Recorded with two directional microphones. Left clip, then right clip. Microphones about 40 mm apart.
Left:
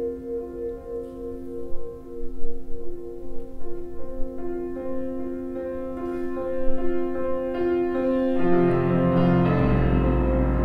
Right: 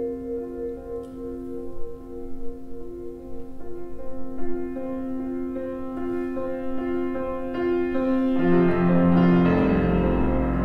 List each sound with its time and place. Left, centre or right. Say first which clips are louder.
4.4 s music: even; centre